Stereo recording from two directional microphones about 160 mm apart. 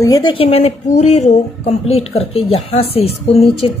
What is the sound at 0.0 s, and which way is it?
A woman's voice, 25° left (ahead or behind).